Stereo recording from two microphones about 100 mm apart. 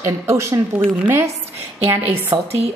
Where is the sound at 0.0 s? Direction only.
30° right (ahead or behind).